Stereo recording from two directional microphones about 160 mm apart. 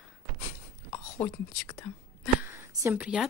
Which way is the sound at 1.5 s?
10° left (ahead or behind).